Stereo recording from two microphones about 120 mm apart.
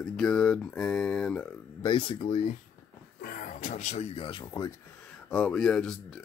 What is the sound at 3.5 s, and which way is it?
Speech, 90° left.